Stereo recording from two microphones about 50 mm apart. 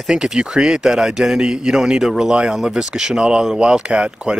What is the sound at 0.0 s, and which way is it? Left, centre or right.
Speech, centre.